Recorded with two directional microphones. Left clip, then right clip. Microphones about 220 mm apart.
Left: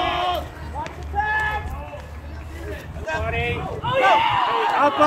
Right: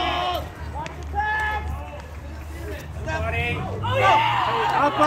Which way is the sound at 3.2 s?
50° right (ahead or behind).